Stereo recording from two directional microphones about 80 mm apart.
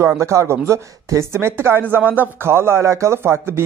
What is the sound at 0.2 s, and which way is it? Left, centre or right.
Speech, right.